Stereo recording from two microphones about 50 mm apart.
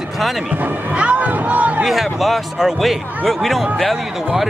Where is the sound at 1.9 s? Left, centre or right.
Centre.